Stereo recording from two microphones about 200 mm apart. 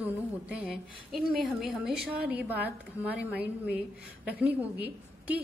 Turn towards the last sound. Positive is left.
turn(degrees=-5)  # may be behind; listen again after turning